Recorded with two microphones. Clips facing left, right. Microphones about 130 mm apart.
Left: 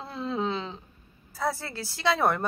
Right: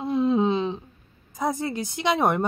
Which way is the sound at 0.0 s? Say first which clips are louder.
Right 9 dB; 20° right (ahead or behind).